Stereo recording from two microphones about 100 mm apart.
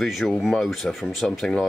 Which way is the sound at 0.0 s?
Centre (ahead or behind).